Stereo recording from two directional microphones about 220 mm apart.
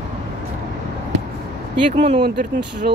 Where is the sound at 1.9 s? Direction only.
30° right (ahead or behind).